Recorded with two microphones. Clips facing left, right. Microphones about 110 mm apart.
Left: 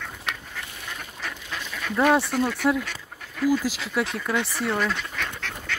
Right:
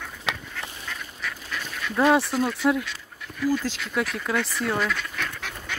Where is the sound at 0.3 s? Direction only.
90° right.